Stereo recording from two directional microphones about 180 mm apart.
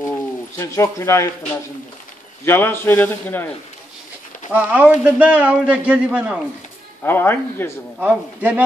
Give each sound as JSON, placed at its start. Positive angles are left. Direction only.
{"t": 0.6, "sound": "a man's voice", "side_deg": 15}
{"t": 2.4, "sound": "a man's voice", "side_deg": 10}
{"t": 4.5, "sound": "a man's voice", "side_deg": -5}
{"t": 7.0, "sound": "a man's voice", "side_deg": 10}
{"t": 8.0, "sound": "a man's voice", "side_deg": -10}